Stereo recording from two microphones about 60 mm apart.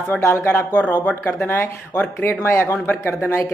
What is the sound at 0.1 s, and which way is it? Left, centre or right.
Speech, left.